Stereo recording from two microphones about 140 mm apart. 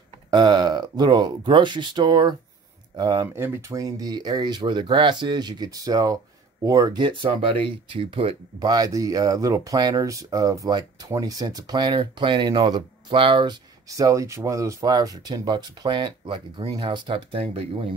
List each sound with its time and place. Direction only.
0.3 s speech: 30° right (ahead or behind)
3.3 s speech: 20° right (ahead or behind); by 8.4 s 40° right (ahead or behind)
8.5 s speech: 30° right (ahead or behind)